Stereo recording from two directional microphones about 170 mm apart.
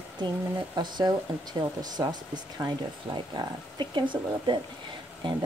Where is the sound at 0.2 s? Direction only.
25° right (ahead or behind).